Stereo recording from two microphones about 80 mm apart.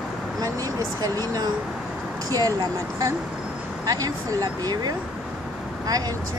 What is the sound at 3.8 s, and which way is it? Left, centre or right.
Speech, right.